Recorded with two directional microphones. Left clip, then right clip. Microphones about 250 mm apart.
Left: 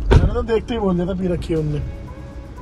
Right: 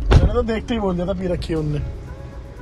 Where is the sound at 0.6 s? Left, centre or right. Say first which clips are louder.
Left 2 dB; right.